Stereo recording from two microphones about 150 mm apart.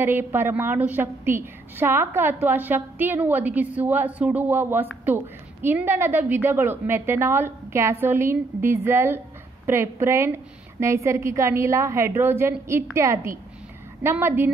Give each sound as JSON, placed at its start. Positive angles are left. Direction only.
{"t": 0.0, "sound": "a woman's voice", "side_deg": -15}